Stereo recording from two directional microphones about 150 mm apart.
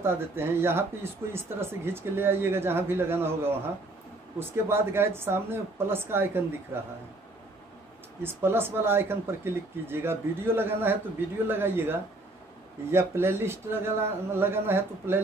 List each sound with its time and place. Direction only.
0.0 s speech: 15° right (ahead or behind)
8.2 s speech: 15° right (ahead or behind)